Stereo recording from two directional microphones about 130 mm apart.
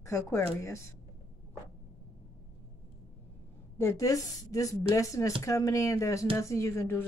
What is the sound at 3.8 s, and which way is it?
Speech, 25° left (ahead or behind).